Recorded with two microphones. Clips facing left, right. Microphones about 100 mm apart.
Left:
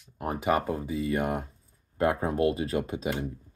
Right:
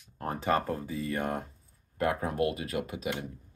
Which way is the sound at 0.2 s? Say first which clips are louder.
Left 2 dB; 15° left (ahead or behind).